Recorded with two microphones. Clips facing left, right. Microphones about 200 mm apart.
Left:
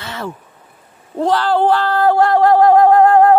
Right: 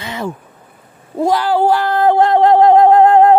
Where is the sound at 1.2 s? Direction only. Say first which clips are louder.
Right 1 dB; 10° right (ahead or behind).